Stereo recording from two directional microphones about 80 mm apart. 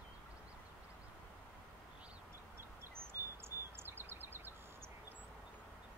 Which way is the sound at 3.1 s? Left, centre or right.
Right.